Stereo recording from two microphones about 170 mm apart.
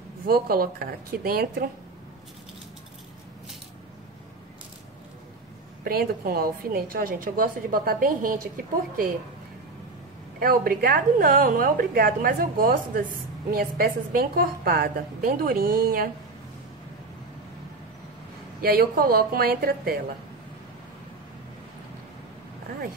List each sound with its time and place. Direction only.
0.3 s a woman's voice: 60° right (ahead or behind)
5.9 s a woman's voice: 60° right (ahead or behind)
10.4 s a woman's voice: 60° right (ahead or behind)
18.6 s a woman's voice: 60° right (ahead or behind)